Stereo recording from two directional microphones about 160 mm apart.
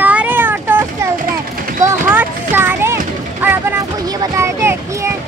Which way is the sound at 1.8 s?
10° right (ahead or behind).